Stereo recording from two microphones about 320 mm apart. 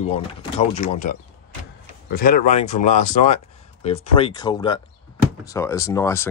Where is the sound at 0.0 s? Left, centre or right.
Centre.